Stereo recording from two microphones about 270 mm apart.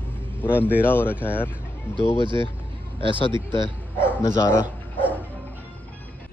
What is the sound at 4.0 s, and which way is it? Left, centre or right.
Speech, centre.